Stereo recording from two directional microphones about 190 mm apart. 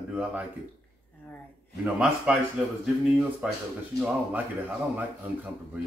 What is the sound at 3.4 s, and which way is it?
Speech, 5° right (ahead or behind).